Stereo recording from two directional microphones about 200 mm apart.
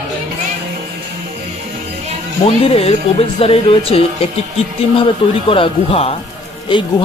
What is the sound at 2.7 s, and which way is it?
Speech, 30° left (ahead or behind).